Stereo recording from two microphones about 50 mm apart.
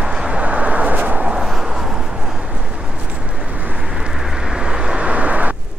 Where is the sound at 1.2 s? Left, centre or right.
Centre.